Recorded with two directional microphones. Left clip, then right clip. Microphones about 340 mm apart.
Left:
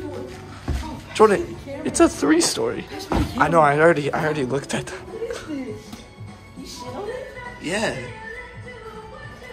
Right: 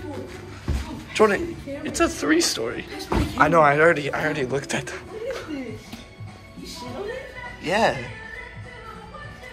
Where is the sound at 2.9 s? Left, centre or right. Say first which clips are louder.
Left 1 dB; left.